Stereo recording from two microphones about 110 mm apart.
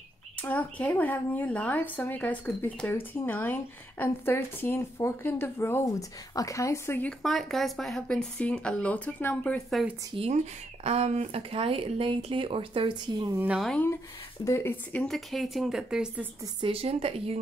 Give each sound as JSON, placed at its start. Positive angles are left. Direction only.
{"t": 0.4, "sound": "speech", "side_deg": 15}
{"t": 7.0, "sound": "speech", "side_deg": 5}
{"t": 10.1, "sound": "speech", "side_deg": -80}
{"t": 14.4, "sound": "speech", "side_deg": 25}
{"t": 14.9, "sound": "speech", "side_deg": 10}
{"t": 16.6, "sound": "speech", "side_deg": -60}